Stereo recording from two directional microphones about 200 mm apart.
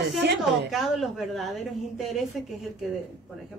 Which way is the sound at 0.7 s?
Centre (ahead or behind).